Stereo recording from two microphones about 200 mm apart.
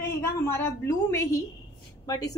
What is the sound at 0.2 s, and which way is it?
A woman's voice, 10° left (ahead or behind).